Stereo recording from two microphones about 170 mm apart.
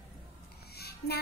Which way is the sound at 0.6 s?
70° left (ahead or behind).